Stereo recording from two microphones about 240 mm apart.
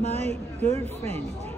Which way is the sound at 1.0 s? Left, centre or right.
Right.